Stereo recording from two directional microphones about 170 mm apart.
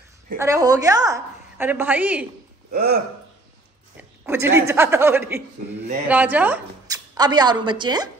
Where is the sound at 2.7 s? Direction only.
60° right (ahead or behind).